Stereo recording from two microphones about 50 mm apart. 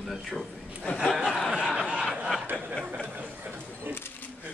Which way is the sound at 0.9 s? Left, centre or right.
Left.